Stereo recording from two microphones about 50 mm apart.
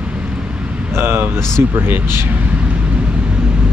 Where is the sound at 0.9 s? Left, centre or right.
Right.